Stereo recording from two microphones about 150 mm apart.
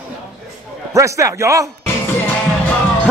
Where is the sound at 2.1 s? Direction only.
15° left (ahead or behind).